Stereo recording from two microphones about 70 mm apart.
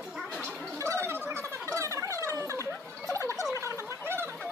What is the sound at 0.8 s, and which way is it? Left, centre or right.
Gargling, right.